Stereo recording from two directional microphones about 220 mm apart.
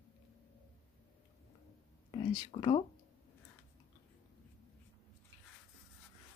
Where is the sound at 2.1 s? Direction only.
20° left (ahead or behind).